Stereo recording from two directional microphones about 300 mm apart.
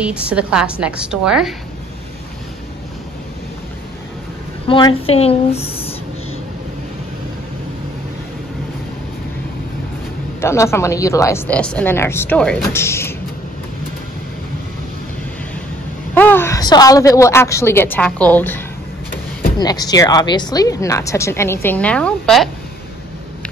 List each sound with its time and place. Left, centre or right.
0.0 s a woman's voice: centre
4.6 s a woman's voice: centre
10.4 s a woman's voice: centre
16.2 s a woman's voice: centre
19.6 s a woman's voice: centre